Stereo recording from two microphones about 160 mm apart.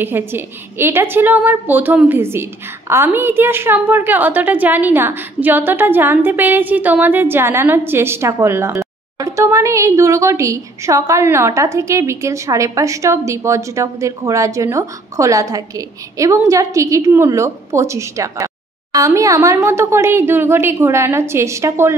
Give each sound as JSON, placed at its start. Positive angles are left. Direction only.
{"t": 0.0, "sound": "a woman's voice", "side_deg": -15}